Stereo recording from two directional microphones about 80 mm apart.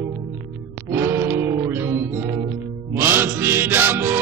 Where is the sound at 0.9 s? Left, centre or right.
Right.